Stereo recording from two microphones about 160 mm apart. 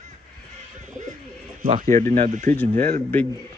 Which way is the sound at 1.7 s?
50° right (ahead or behind).